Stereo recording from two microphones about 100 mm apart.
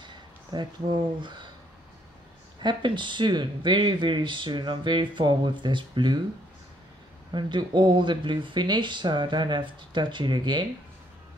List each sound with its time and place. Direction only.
0.0 s a sound: 50° right (ahead or behind)
2.6 s speech: 50° right (ahead or behind)
7.3 s speech: 50° right (ahead or behind)